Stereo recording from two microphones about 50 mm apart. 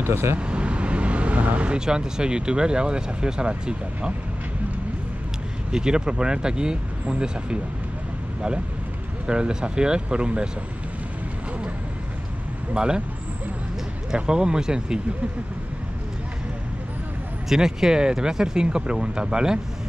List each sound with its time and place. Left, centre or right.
0.0 s speech: right
0.4 s vehicle: right
1.9 s speech: centre
5.7 s speech: centre
9.2 s speech: centre
12.7 s speech: centre
14.1 s speech: centre
17.5 s speech: centre